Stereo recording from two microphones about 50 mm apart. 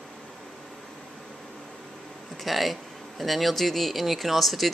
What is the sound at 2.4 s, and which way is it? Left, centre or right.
Speech, centre.